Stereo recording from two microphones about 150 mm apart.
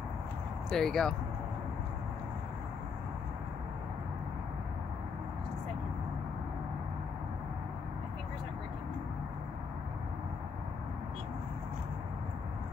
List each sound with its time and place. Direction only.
0.7 s speech: 5° left (ahead or behind)